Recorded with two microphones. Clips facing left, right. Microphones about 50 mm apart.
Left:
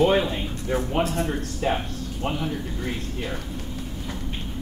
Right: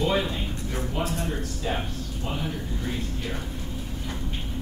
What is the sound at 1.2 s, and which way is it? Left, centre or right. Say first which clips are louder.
Speech: left 4 dB; left.